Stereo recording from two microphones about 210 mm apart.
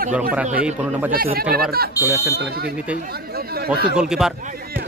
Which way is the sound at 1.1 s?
45° right (ahead or behind).